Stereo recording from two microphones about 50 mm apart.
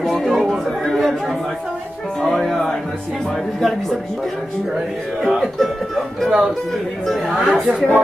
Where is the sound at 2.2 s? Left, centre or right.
Centre.